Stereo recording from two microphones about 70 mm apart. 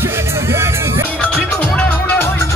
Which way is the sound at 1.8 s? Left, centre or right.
Left.